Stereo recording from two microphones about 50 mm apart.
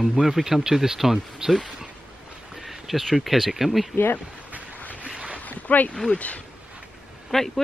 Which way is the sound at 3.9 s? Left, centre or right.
Left.